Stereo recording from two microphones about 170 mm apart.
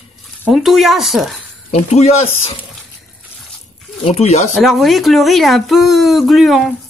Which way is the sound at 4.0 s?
40° left (ahead or behind).